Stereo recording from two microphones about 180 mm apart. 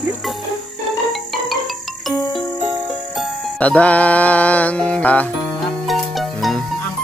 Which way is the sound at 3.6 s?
5° left (ahead or behind).